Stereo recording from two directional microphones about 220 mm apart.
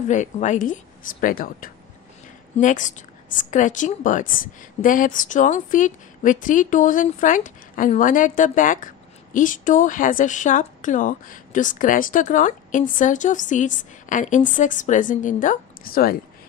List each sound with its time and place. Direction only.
0.1 s a woman's voice: 35° left (ahead or behind)